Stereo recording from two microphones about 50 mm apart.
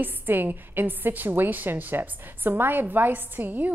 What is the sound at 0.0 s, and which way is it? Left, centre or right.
A woman's voice, right.